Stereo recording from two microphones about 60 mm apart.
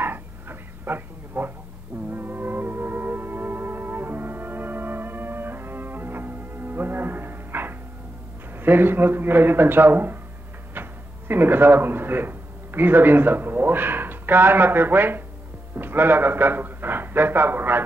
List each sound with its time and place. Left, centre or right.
0.0 s a sound: right
2.0 s music: right
8.5 s a man's voice: right